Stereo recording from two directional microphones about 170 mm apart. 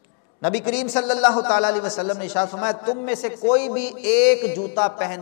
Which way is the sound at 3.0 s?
15° left (ahead or behind).